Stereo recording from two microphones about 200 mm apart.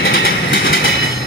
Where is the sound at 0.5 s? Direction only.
70° left (ahead or behind).